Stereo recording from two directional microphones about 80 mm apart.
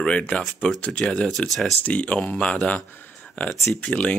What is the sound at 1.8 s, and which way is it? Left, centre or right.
Speech, centre.